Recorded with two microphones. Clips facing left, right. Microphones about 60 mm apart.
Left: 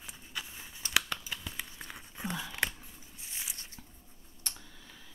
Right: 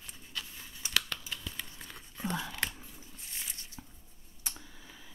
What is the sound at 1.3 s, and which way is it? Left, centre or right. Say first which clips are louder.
Tearing: left 1 dB; centre.